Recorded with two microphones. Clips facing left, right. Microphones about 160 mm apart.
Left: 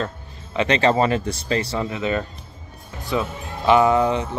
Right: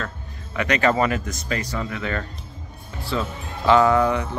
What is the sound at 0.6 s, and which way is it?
Speech, 25° left (ahead or behind).